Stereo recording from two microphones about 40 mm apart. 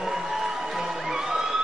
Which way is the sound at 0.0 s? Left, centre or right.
Centre.